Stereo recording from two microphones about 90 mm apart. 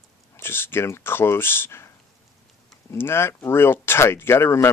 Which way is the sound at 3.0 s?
25° left (ahead or behind).